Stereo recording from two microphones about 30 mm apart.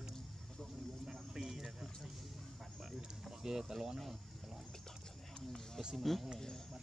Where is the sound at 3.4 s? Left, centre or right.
Centre.